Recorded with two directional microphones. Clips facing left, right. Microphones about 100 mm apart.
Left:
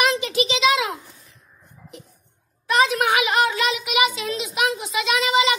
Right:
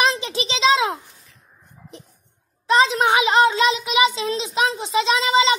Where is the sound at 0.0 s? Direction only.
30° right (ahead or behind).